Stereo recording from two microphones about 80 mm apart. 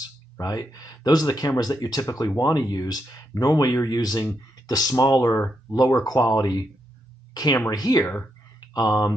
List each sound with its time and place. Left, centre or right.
0.0 s speech: left
7.7 s speech: left